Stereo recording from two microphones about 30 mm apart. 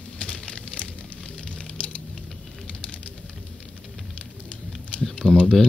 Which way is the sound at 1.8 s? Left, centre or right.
Left.